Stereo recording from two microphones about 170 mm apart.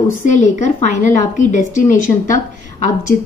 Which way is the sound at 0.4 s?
45° left (ahead or behind).